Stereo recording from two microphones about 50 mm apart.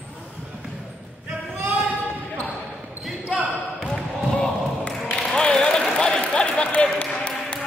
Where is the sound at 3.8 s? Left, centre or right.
Centre.